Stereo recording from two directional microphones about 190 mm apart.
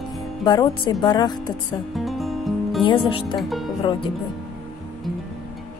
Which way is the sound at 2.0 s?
Centre (ahead or behind).